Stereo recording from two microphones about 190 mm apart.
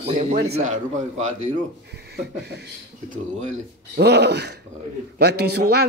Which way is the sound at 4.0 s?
60° right (ahead or behind).